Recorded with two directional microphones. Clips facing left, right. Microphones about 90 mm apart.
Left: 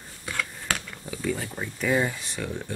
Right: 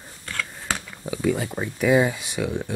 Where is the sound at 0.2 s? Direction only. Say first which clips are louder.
Even; 10° left (ahead or behind).